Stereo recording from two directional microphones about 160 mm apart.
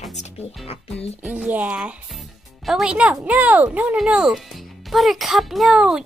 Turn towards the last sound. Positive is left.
turn(degrees=-5)  # may be behind; listen again after turning